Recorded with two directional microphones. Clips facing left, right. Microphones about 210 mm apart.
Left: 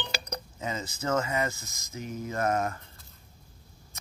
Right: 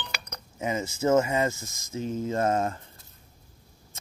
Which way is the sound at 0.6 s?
25° right (ahead or behind).